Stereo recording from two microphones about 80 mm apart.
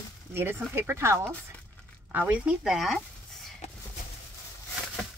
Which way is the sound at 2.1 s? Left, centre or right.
Right.